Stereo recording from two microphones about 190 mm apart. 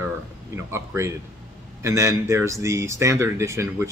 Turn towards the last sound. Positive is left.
turn(degrees=-15)  # may be behind; listen again after turning